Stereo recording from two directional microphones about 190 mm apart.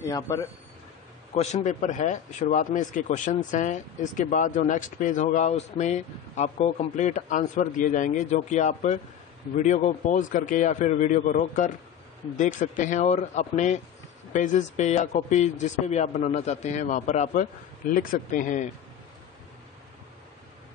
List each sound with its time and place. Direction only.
0.0 s speech: 20° left (ahead or behind)
1.3 s speech: 35° left (ahead or behind)